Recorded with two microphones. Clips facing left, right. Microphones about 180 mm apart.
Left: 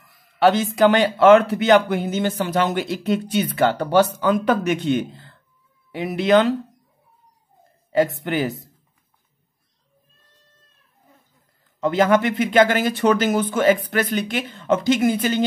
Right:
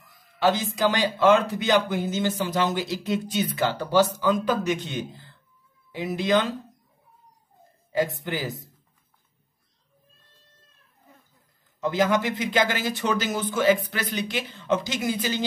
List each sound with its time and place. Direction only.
0.4 s speech: 65° left (ahead or behind)
7.9 s speech: 65° left (ahead or behind)
11.8 s speech: 60° left (ahead or behind)